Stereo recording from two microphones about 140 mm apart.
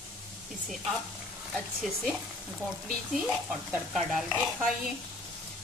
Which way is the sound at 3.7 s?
5° right (ahead or behind).